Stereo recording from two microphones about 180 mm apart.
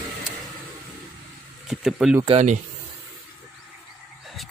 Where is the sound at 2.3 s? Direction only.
35° right (ahead or behind).